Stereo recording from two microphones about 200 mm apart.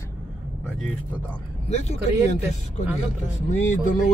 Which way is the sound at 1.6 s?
35° left (ahead or behind).